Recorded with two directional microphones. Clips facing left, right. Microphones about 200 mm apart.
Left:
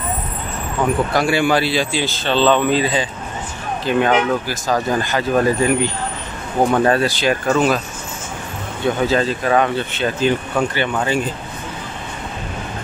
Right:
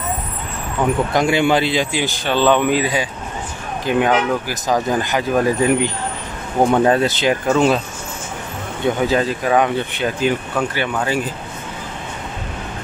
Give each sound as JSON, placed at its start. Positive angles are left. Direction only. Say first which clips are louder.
{"t": 0.8, "sound": "speech", "louder": "right 1 dB", "side_deg": -20}
{"t": 8.8, "sound": "speech", "louder": "even", "side_deg": -15}